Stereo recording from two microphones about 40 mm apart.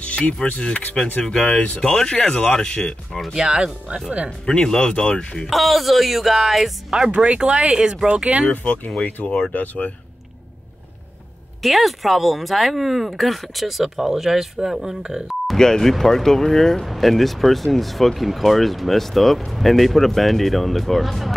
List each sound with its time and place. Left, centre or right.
0.0 s a sound: left
1.2 s speech: centre
3.3 s speech: centre
4.5 s speech: centre
5.5 s speech: centre
7.2 s speech: centre
9.5 s speech: left
11.6 s speech: centre
15.5 s speech: centre
16.8 s speech: centre